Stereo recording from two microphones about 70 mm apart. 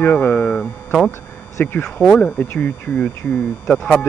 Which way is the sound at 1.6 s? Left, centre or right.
Left.